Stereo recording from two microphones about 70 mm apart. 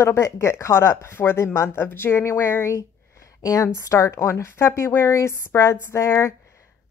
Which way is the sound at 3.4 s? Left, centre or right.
Left.